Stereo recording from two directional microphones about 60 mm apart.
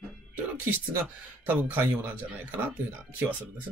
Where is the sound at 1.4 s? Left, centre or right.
Right.